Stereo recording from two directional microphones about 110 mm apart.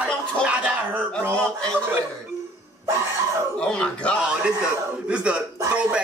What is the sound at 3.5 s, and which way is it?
Speech, 10° left (ahead or behind).